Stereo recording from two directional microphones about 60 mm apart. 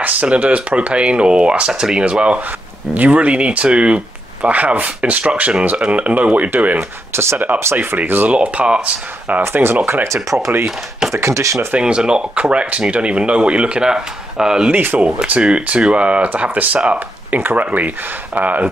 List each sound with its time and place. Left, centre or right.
0.0 s speech: right
9.4 s speech: right
11.1 s speech: right
11.8 s speech: centre